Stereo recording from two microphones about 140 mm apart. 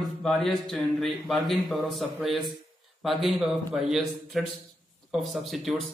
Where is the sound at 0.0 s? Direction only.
Centre (ahead or behind).